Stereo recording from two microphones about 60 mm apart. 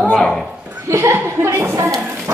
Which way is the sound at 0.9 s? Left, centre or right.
Right.